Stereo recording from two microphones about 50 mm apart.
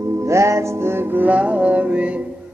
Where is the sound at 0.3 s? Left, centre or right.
Right.